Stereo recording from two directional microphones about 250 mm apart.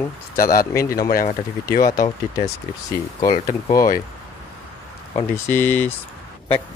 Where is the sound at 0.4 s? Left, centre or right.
Left.